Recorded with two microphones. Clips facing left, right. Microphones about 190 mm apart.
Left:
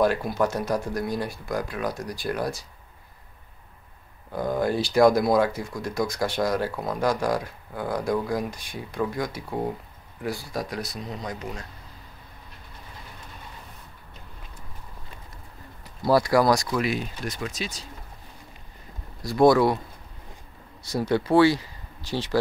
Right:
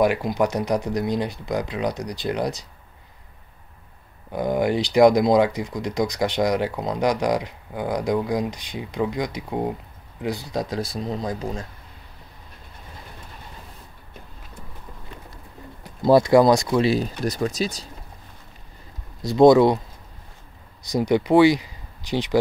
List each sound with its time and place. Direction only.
0.0 s speech: 15° right (ahead or behind)
4.3 s speech: 15° right (ahead or behind)
16.0 s speech: 20° right (ahead or behind); by 17.8 s 40° right (ahead or behind)
19.2 s speech: 20° right (ahead or behind)
20.8 s speech: 15° right (ahead or behind)